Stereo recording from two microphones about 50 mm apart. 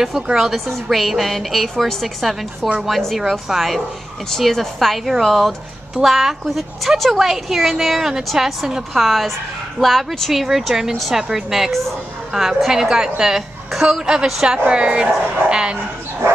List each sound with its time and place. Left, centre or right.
0.4 s a woman's voice: centre
9.0 s a woman's voice: centre